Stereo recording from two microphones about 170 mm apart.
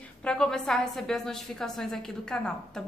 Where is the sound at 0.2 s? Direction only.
5° left (ahead or behind).